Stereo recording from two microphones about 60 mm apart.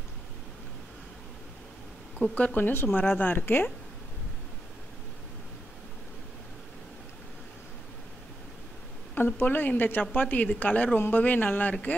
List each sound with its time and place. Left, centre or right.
2.3 s speech: left
3.3 s speech: left
9.1 s speech: left